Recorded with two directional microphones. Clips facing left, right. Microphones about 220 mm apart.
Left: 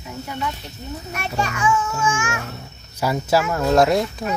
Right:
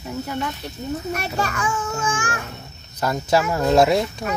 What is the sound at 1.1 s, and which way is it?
A child's voice, 40° right (ahead or behind).